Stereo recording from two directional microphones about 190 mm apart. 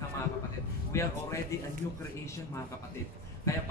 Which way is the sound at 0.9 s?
15° left (ahead or behind).